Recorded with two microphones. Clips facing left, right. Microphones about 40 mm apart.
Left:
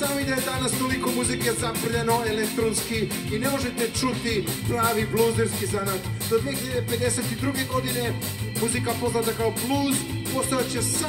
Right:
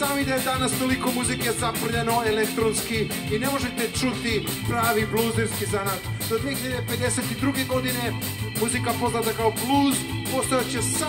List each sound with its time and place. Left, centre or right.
0.0 s a sound: right
1.2 s music: right
3.5 s music: right
7.4 s music: right
8.8 s music: right